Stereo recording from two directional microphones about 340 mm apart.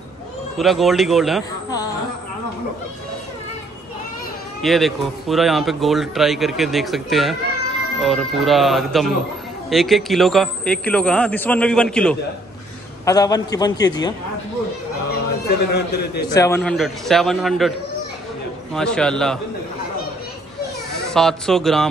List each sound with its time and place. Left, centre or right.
0.6 s a man's voice: centre
4.6 s a man's voice: centre
15.7 s a man's voice: left
16.3 s a man's voice: centre
21.1 s a man's voice: centre